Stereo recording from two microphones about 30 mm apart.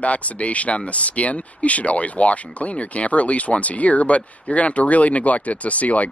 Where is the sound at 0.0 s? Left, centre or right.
Left.